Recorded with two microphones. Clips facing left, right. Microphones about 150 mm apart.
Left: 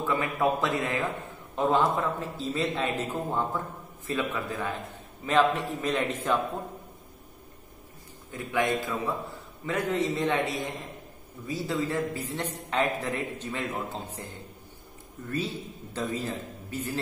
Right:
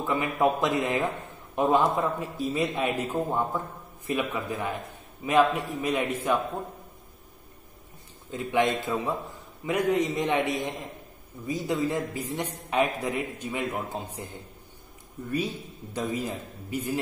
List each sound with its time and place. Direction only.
0.0 s a man's voice: 20° right (ahead or behind)
8.3 s a man's voice: 20° right (ahead or behind)
15.3 s a man's voice: 15° right (ahead or behind)